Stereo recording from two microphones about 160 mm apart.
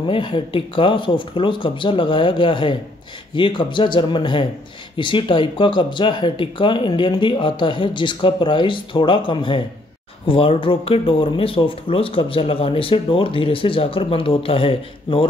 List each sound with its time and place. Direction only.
0.0 s speech: 30° left (ahead or behind)